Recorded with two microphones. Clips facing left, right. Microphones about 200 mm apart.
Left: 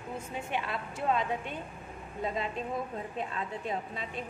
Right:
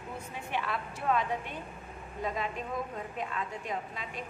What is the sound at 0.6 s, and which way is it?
A woman's voice, 25° left (ahead or behind).